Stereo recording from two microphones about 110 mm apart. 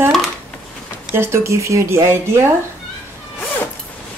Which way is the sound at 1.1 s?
25° right (ahead or behind).